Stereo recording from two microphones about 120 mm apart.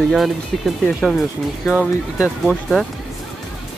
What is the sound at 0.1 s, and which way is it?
Speech, centre (ahead or behind).